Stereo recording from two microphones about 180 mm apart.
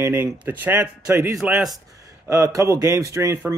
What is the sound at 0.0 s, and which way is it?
Speech, 10° right (ahead or behind).